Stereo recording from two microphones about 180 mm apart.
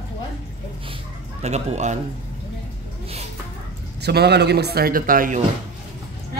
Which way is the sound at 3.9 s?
65° right (ahead or behind).